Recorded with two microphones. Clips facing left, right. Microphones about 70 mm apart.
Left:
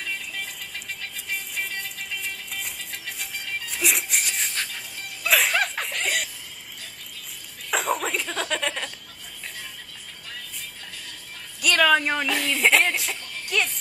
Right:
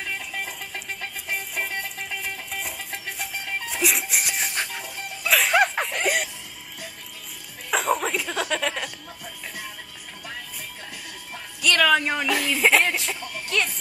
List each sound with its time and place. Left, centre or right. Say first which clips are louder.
0.0 s music: right 2 dB; right
1.3 s music: right 2 dB; right
3.2 s music: right 2 dB; centre
5.5 s snicker: right 5 dB; centre
7.7 s chuckle: right 2 dB; centre
11.6 s speech: even; centre
13.5 s music: even; centre